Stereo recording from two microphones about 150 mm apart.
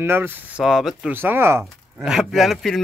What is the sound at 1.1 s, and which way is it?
Speech, 15° right (ahead or behind).